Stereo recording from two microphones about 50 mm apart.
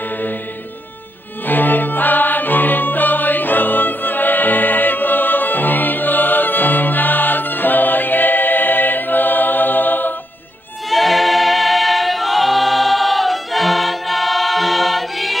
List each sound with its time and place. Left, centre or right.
1.4 s music: left
10.9 s choir: centre